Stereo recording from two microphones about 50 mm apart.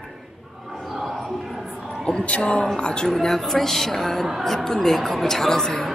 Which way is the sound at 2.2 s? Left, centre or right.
Left.